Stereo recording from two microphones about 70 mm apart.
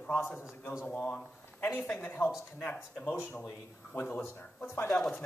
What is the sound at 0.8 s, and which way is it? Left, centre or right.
Speech, left.